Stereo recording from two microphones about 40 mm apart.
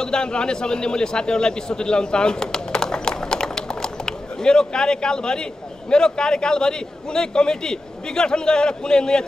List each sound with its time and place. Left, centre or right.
0.0 s a man's voice: left